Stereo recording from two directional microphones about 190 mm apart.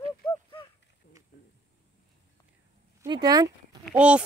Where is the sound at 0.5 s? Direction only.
30° left (ahead or behind).